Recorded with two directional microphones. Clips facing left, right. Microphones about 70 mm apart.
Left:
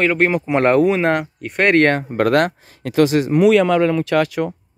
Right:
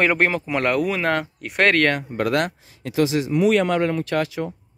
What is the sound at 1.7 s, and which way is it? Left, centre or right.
Speech, left.